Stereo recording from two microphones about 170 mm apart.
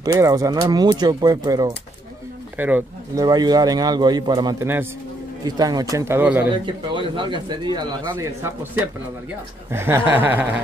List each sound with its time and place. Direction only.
0.0 s a man's voice: 20° right (ahead or behind)
2.5 s speech: 10° right (ahead or behind)
3.2 s a man's voice: 20° right (ahead or behind)
6.5 s a man's voice: 30° right (ahead or behind)
9.7 s speech: 15° right (ahead or behind)